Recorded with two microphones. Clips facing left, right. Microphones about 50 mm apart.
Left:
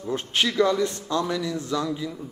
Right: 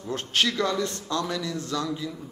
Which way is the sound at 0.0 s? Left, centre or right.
Centre.